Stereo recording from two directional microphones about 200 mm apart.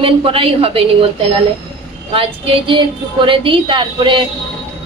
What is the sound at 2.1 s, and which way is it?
A woman's voice, 25° right (ahead or behind).